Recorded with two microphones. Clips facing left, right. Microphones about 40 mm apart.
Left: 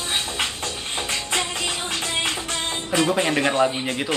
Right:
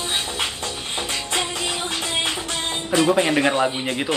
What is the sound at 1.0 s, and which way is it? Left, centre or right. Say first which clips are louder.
Music: even; centre.